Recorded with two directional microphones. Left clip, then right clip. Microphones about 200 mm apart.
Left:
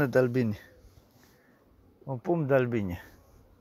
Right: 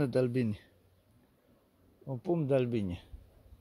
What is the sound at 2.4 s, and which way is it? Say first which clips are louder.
Speech: left 5 dB; 15° right (ahead or behind).